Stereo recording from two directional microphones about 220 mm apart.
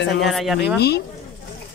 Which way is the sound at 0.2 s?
Centre (ahead or behind).